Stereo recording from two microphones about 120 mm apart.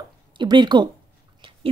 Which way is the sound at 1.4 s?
45° right (ahead or behind).